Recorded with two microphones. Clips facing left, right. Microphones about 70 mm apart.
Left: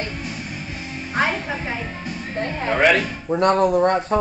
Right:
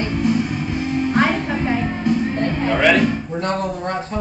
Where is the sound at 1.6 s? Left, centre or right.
Right.